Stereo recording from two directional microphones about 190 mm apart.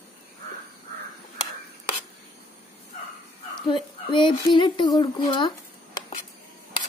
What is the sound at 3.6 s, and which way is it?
Speech, 25° left (ahead or behind).